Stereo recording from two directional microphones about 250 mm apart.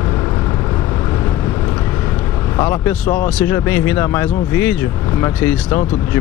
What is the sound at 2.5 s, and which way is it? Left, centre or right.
Speech, centre.